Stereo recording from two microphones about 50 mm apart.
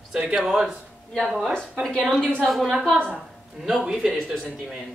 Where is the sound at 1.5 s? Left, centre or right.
Centre.